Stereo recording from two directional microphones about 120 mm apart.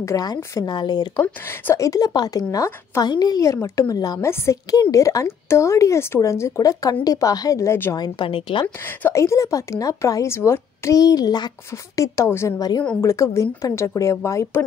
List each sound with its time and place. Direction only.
0.0 s speech: 30° left (ahead or behind)
8.0 s a woman's voice: 45° left (ahead or behind)
9.1 s speech: 25° left (ahead or behind)
12.0 s speech: 20° left (ahead or behind)